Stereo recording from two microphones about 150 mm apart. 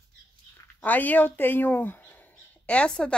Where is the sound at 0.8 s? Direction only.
10° left (ahead or behind).